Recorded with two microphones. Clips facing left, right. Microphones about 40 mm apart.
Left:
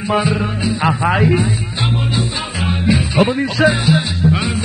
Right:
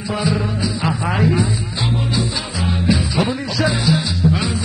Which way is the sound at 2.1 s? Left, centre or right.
Left.